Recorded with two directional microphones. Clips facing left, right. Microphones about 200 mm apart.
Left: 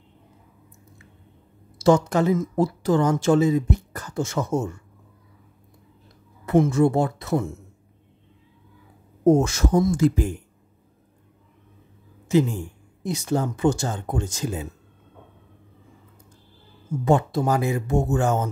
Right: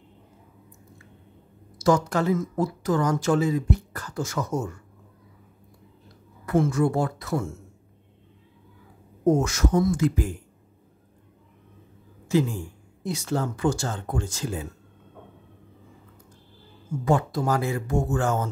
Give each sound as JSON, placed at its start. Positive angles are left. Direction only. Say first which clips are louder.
{"t": 1.8, "sound": "speech", "louder": "left 4 dB", "side_deg": 25}
{"t": 6.4, "sound": "speech", "louder": "left 4 dB", "side_deg": 20}
{"t": 9.2, "sound": "speech", "louder": "left 4 dB", "side_deg": 25}
{"t": 12.3, "sound": "speech", "louder": "left 3 dB", "side_deg": 20}
{"t": 17.0, "sound": "speech", "louder": "left 3 dB", "side_deg": 25}